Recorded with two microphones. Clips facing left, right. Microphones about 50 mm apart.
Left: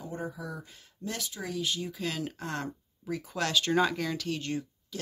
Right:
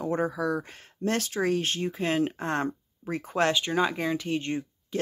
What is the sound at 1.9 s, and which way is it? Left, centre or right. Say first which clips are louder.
Speech: right 8 dB; right.